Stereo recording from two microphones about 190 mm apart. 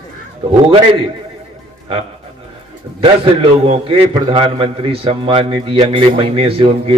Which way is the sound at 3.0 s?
30° right (ahead or behind).